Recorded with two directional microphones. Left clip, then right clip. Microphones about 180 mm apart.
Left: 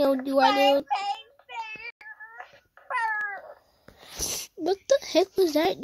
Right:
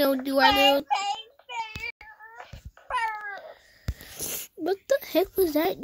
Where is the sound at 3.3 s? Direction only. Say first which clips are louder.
Left 1 dB; 25° right (ahead or behind).